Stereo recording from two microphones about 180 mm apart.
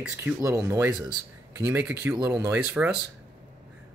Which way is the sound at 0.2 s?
15° right (ahead or behind).